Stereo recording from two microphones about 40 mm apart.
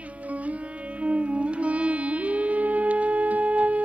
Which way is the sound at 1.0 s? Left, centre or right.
Right.